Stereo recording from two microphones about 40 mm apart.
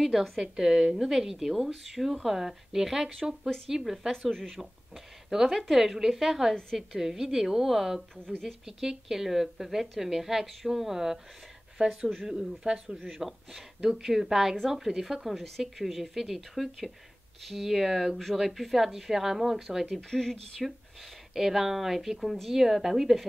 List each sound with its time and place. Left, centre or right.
0.4 s a woman's voice: centre
4.1 s a woman's voice: centre
4.5 s a woman's voice: centre
5.8 s a woman's voice: centre
6.5 s a woman's voice: centre
7.0 s a woman's voice: centre
8.3 s speech: centre
8.8 s a woman's voice: centre
12.3 s a woman's voice: centre
15.3 s a woman's voice: centre
15.6 s a woman's voice: centre
17.6 s a woman's voice: centre
20.1 s speech: centre
21.3 s a woman's voice: centre